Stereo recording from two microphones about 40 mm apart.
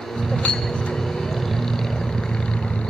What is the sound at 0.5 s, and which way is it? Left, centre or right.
Music, centre.